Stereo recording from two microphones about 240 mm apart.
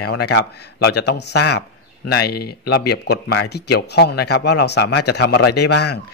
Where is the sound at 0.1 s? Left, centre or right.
Left.